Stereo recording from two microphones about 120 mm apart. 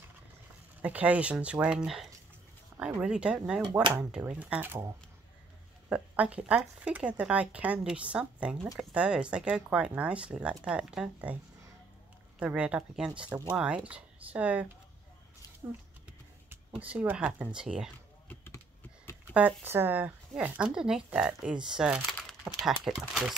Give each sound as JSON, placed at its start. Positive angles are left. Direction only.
{"t": 0.8, "sound": "speech", "side_deg": -10}
{"t": 5.9, "sound": "speech", "side_deg": -10}
{"t": 12.4, "sound": "speech", "side_deg": -10}
{"t": 18.3, "sound": "a sound", "side_deg": 20}
{"t": 19.3, "sound": "speech", "side_deg": -15}